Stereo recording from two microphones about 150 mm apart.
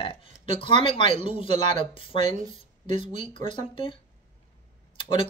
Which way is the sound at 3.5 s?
35° left (ahead or behind).